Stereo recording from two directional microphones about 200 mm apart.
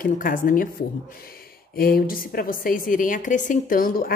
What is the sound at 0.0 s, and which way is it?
Speech, 45° left (ahead or behind).